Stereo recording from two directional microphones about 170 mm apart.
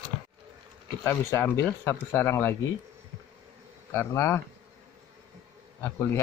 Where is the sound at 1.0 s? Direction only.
15° left (ahead or behind).